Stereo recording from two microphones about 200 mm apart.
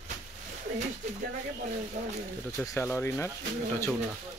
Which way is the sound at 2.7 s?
10° left (ahead or behind).